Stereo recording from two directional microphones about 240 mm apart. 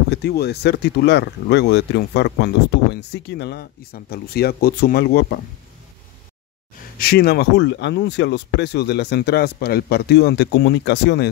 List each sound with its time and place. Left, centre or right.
0.1 s speech: left
7.0 s speech: left